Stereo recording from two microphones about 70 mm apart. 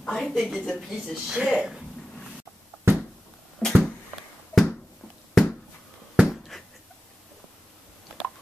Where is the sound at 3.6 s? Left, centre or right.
Centre.